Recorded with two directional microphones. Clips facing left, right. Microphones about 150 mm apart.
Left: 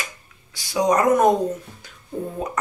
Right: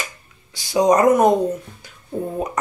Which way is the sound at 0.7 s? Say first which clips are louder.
Right 3 dB; 20° right (ahead or behind).